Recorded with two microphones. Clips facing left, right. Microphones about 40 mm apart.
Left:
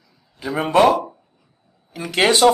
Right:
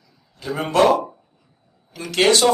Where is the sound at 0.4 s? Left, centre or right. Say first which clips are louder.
Left 2 dB; centre.